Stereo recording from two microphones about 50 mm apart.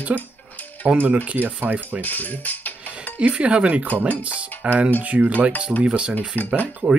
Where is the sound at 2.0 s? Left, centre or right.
Left.